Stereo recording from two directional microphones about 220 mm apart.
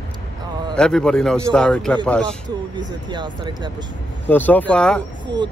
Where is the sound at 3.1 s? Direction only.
20° right (ahead or behind).